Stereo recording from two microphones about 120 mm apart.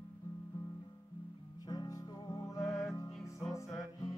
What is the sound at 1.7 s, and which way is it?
Music, 30° left (ahead or behind).